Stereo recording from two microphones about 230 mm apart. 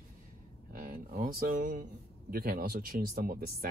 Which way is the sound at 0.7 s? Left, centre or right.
Right.